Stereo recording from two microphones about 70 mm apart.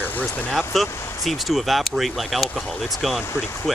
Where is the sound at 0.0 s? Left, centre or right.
Left.